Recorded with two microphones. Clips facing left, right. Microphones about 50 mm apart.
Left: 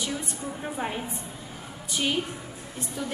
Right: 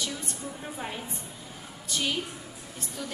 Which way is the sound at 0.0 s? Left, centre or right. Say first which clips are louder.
Left 3 dB; centre.